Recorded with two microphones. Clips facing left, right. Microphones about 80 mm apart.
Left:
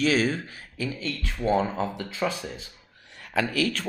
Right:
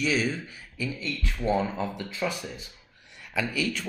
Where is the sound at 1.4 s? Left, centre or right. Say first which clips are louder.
Left 2 dB; left.